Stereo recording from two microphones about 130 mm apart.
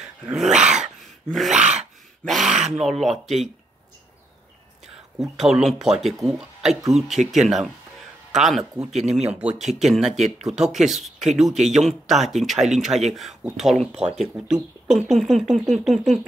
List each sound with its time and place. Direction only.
0.0 s dog: 5° right (ahead or behind)
1.0 s wail: centre (ahead or behind)
1.6 s a sound: 60° right (ahead or behind)
2.2 s a sound: centre (ahead or behind)
2.7 s speech: centre (ahead or behind)
5.4 s speech: centre (ahead or behind)